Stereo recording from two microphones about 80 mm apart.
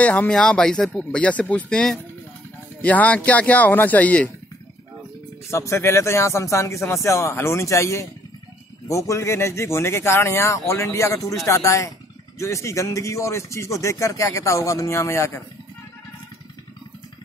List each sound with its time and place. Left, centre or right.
0.0 s speech: centre
5.5 s speech: left